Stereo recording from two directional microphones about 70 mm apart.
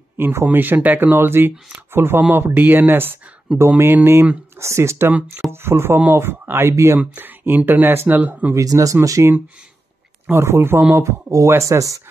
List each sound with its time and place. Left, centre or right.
0.2 s speech: right
4.6 s speech: right
6.7 s speech: right
7.0 s speech: right
8.5 s speech: right
10.3 s speech: right